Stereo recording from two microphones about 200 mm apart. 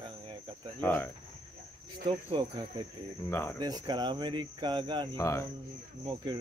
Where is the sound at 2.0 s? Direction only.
25° right (ahead or behind).